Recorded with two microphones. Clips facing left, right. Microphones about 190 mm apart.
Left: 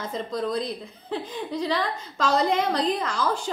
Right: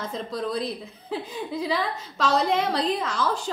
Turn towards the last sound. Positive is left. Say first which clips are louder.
# even
turn(degrees=0)  # may be behind; listen again after turning